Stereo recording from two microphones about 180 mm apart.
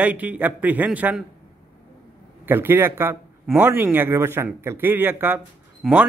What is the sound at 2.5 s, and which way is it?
A man's voice, 10° right (ahead or behind).